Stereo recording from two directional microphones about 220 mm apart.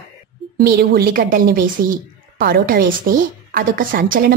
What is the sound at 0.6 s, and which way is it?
A woman's voice, 45° right (ahead or behind).